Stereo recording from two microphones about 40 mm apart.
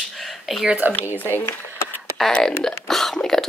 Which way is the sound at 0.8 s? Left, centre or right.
Right.